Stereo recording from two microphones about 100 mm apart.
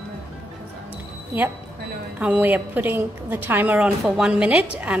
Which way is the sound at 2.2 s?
15° right (ahead or behind).